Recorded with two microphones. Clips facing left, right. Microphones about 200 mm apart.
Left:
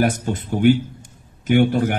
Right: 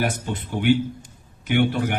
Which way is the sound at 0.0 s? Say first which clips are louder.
Left 5 dB; 45° left (ahead or behind).